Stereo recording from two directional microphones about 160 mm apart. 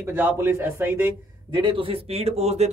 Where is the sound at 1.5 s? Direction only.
30° right (ahead or behind).